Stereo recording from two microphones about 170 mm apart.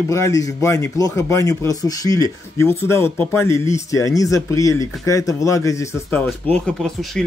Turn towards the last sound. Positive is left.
turn(degrees=0)  # may be behind; listen again after turning